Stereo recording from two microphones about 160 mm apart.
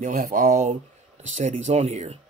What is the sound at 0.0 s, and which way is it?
Speech, 55° right (ahead or behind).